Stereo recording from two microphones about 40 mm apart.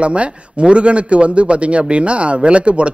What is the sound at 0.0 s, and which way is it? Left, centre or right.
A man's voice, right.